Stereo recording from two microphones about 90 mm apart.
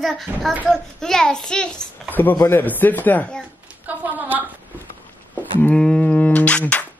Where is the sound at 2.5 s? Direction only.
20° left (ahead or behind).